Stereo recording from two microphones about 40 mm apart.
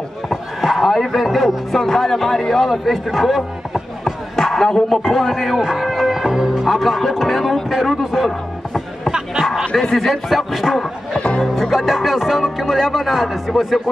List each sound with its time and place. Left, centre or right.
0.3 s a sound: centre
1.8 s a man's voice: centre
4.0 s a sound: centre
5.0 s a man's voice: centre
5.8 s music: centre
6.7 s a man's voice: centre
8.3 s music: centre
9.1 s a sound: centre
9.9 s a man's voice: centre
11.1 s music: left
11.4 s music: centre
11.8 s a man's voice: centre